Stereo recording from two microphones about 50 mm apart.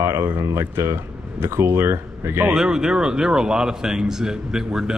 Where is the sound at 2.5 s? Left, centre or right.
Centre.